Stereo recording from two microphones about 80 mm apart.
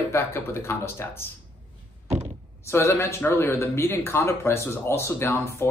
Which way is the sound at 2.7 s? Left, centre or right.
Left.